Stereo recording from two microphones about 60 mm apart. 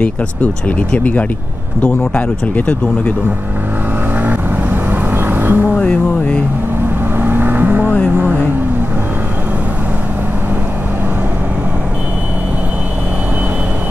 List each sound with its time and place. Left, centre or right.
0.0 s speech: left
4.2 s vehicle: right
5.8 s a sound: centre
7.2 s vehicle: right